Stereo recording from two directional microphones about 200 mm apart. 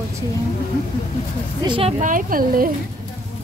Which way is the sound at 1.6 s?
25° right (ahead or behind).